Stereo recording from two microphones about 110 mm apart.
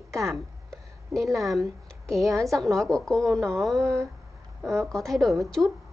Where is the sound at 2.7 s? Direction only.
5° left (ahead or behind).